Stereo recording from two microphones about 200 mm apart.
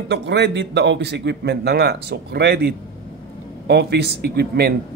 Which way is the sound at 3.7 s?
55° right (ahead or behind).